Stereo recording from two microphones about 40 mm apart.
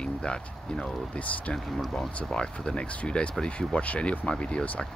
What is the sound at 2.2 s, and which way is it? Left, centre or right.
Speech, centre.